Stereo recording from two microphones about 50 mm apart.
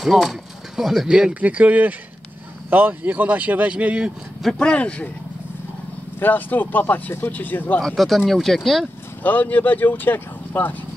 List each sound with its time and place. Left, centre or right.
0.0 s speech: centre
1.4 s speech: right
4.6 s speech: left
6.1 s speech: left
7.8 s speech: centre
9.2 s speech: left